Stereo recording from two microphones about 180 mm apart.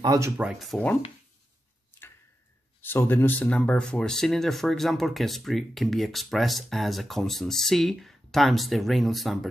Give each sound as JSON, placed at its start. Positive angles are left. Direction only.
{"t": 0.0, "sound": "speech", "side_deg": -20}
{"t": 0.4, "sound": "speech", "side_deg": 0}
{"t": 2.8, "sound": "speech", "side_deg": 10}